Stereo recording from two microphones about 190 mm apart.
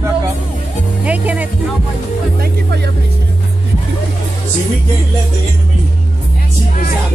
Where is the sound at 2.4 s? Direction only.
60° right (ahead or behind).